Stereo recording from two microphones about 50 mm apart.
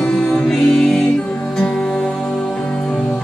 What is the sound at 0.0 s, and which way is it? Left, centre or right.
Music, centre.